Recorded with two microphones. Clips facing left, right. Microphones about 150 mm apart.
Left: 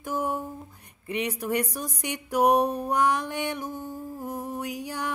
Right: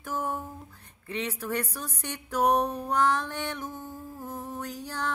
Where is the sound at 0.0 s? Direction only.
15° left (ahead or behind).